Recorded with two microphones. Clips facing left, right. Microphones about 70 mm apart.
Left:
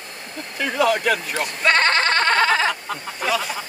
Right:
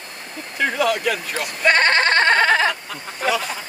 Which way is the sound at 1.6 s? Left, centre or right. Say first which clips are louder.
Right 2 dB; right.